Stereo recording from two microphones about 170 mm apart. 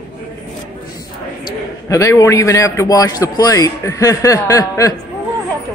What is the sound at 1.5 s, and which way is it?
Speech, 20° left (ahead or behind).